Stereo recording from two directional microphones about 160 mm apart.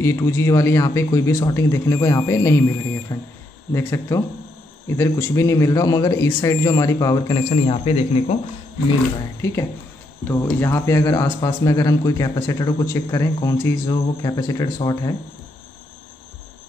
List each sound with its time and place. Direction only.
0.0 s speech: 20° left (ahead or behind)
7.4 s speech: 40° left (ahead or behind)
10.2 s speech: 15° left (ahead or behind)